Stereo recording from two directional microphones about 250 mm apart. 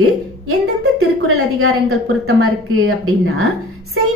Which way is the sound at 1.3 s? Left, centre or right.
Right.